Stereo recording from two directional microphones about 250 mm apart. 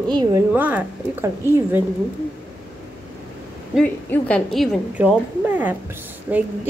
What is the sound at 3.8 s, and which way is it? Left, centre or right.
A woman's voice, centre.